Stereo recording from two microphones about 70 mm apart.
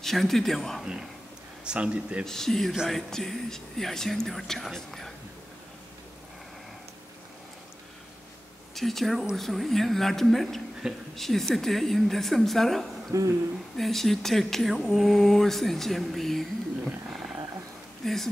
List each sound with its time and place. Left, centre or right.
0.0 s speech: centre
1.6 s a man's voice: centre
2.2 s speech: centre
8.7 s speech: centre
10.8 s a man's voice: centre
11.1 s speech: centre
13.1 s speech: right
13.7 s speech: centre